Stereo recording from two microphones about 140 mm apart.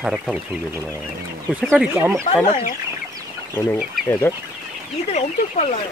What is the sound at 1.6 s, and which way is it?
Speech, centre (ahead or behind).